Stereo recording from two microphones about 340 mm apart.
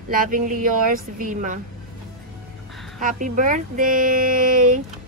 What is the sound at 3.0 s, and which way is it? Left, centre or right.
Speech, right.